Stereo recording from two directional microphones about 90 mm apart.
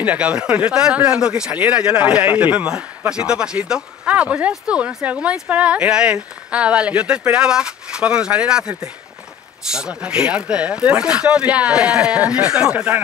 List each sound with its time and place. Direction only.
0.0 s speech: 15° right (ahead or behind)